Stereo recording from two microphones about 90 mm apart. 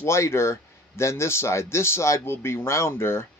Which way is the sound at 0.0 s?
30° left (ahead or behind).